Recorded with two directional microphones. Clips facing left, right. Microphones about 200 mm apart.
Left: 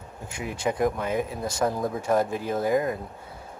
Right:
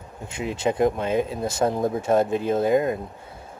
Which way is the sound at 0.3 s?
25° right (ahead or behind).